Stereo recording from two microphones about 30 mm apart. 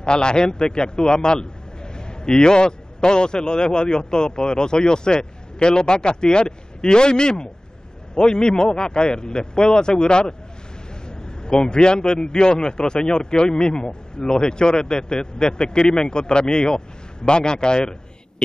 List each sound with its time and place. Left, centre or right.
0.0 s a man's voice: left